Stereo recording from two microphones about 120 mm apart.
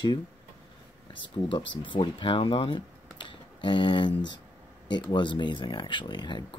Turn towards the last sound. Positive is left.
turn(degrees=40)  # may be behind; listen again after turning